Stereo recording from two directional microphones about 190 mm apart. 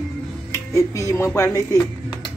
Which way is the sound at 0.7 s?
15° left (ahead or behind).